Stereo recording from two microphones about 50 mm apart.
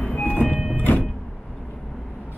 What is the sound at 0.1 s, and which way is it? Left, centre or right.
Vehicle, left.